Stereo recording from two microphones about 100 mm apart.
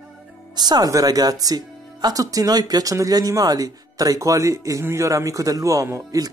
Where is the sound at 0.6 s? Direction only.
40° right (ahead or behind).